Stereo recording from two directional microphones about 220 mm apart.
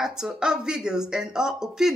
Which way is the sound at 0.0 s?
Centre (ahead or behind).